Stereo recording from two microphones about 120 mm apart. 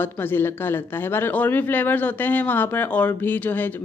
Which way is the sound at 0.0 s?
15° left (ahead or behind).